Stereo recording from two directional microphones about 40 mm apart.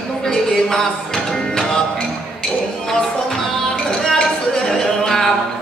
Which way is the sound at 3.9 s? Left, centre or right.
Centre.